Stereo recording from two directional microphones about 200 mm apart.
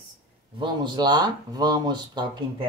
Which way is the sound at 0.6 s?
20° right (ahead or behind).